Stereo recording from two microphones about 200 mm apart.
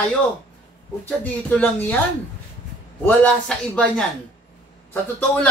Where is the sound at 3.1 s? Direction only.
5° left (ahead or behind).